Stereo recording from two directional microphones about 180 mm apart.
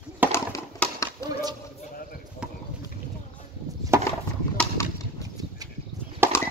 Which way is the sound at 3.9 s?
15° right (ahead or behind).